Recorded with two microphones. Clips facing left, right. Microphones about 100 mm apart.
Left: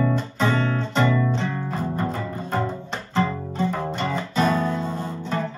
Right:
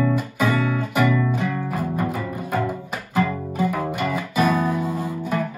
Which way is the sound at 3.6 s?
25° left (ahead or behind).